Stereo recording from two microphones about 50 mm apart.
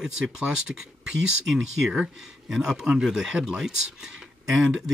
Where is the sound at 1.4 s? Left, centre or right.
Centre.